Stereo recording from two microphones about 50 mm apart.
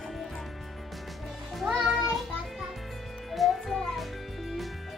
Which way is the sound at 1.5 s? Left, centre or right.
Centre.